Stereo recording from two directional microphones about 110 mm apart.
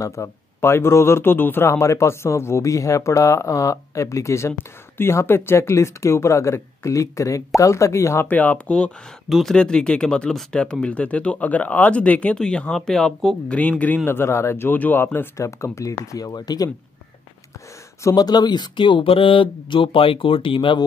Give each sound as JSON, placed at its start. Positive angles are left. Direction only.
{"t": 0.0, "sound": "speech", "side_deg": 25}
{"t": 8.3, "sound": "speech", "side_deg": 15}
{"t": 18.0, "sound": "speech", "side_deg": 35}